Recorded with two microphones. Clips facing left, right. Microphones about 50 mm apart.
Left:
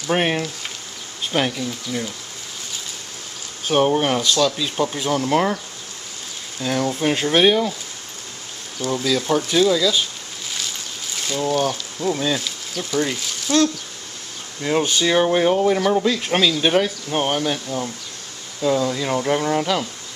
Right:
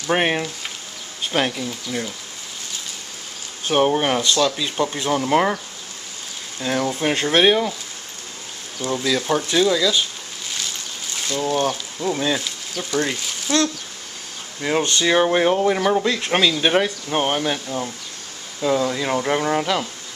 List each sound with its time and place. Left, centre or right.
0.0 s speech: centre
3.6 s speech: centre
6.6 s speech: centre
8.7 s speech: centre
11.1 s speech: centre
14.8 s speech: centre
15.0 s speech: centre